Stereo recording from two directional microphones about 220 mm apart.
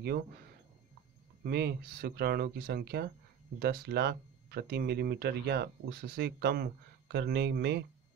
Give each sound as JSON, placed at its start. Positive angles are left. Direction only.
{"t": 1.4, "sound": "speech", "side_deg": -50}